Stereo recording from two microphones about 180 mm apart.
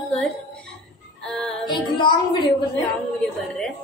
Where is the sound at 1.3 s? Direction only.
5° left (ahead or behind).